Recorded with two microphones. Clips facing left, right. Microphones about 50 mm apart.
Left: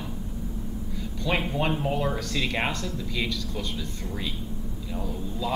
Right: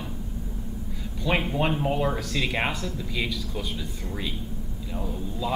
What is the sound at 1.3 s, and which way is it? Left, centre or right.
Speech, centre.